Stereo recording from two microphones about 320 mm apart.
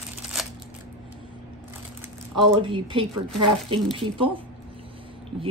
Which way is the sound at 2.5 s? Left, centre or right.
Centre.